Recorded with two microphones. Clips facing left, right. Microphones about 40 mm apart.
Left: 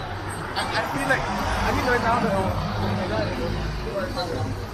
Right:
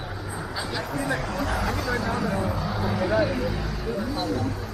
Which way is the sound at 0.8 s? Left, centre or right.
Left.